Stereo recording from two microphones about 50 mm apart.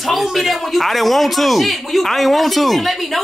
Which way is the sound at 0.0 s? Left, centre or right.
Centre.